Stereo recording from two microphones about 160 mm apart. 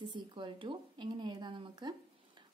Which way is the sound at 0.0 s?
30° right (ahead or behind).